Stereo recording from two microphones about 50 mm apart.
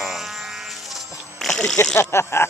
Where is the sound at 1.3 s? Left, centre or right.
Centre.